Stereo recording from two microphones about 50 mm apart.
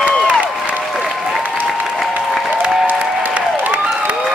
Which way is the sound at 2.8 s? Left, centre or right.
Right.